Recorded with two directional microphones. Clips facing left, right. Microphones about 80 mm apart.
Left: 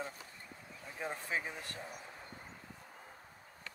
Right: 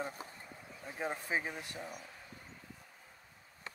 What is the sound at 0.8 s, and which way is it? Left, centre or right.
Speech, centre.